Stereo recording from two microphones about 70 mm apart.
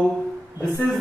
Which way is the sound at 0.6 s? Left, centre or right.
Left.